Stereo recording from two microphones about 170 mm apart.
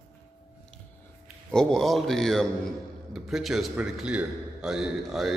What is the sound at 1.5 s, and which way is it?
A man's voice, 5° left (ahead or behind).